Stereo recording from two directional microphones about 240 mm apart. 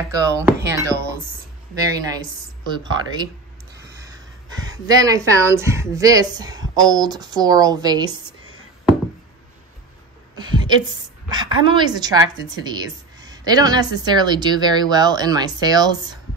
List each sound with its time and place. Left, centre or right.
0.2 s a woman's voice: centre
2.6 s a woman's voice: centre
4.6 s a woman's voice: centre
10.3 s a sound: centre
11.2 s a woman's voice: centre